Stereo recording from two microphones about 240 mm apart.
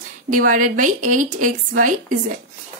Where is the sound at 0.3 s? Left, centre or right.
Right.